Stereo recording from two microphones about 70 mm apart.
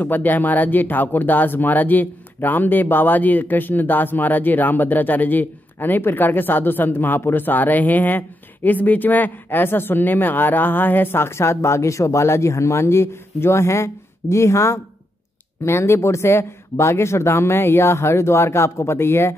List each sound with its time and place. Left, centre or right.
0.0 s speech: left